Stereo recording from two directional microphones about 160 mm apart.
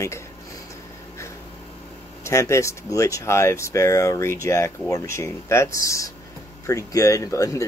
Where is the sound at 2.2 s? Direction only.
15° left (ahead or behind).